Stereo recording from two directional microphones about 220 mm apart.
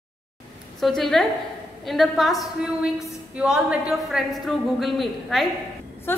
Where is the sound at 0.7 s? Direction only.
Centre (ahead or behind).